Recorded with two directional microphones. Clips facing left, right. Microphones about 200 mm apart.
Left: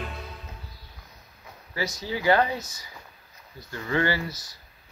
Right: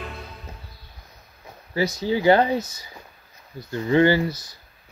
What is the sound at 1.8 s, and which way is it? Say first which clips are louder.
Speech: right 8 dB; 25° right (ahead or behind).